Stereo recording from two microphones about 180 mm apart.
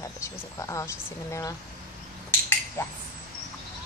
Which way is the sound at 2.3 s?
15° left (ahead or behind).